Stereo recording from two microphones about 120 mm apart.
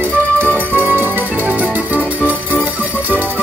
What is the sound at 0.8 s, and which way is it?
Music, 15° right (ahead or behind).